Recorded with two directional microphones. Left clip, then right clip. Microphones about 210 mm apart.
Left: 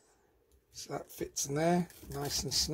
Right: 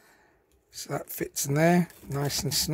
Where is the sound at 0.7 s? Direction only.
35° right (ahead or behind).